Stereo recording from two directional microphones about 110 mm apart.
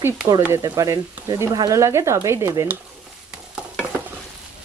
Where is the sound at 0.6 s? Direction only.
30° right (ahead or behind).